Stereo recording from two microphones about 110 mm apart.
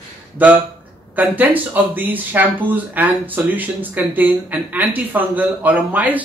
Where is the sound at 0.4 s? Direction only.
15° right (ahead or behind).